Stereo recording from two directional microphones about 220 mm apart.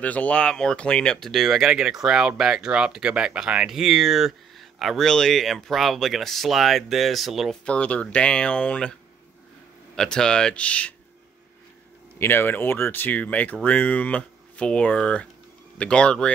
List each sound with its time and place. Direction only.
0.0 s speech: 5° left (ahead or behind)
9.9 s speech: 5° left (ahead or behind)
12.2 s speech: 10° left (ahead or behind)